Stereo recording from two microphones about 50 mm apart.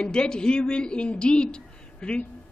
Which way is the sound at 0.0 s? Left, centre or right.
Centre.